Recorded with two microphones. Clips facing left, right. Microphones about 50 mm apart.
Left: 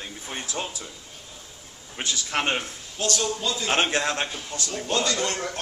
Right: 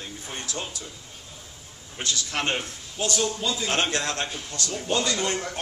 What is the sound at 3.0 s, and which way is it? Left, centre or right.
Speech, centre.